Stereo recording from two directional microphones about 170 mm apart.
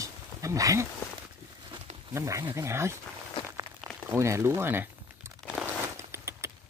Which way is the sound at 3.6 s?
15° right (ahead or behind).